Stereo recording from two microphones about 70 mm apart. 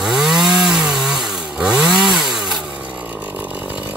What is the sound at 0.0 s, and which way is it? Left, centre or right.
Chainsaw, centre.